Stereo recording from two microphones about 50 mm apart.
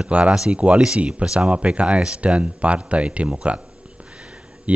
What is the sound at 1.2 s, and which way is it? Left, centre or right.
Speech, centre.